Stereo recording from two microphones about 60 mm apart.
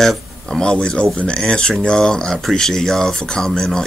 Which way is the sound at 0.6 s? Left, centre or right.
Centre.